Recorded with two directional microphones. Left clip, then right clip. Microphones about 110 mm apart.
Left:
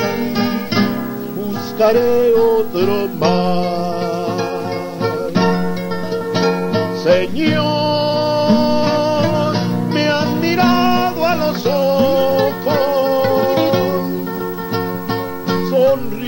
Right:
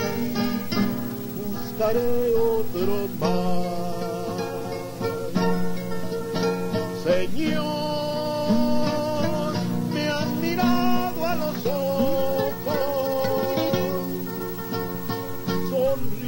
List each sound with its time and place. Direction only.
0.0 s music: 35° left (ahead or behind)
5.0 s music: 35° left (ahead or behind)
15.5 s music: 30° left (ahead or behind)